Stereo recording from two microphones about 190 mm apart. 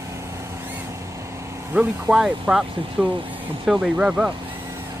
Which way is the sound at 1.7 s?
5° right (ahead or behind).